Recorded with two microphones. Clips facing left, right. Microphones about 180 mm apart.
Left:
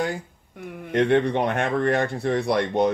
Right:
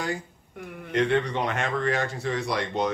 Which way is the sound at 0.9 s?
55° left (ahead or behind).